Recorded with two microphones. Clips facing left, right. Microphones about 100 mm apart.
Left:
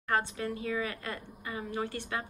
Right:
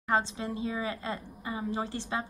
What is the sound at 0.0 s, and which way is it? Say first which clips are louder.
A woman's voice: right 2 dB; 25° right (ahead or behind).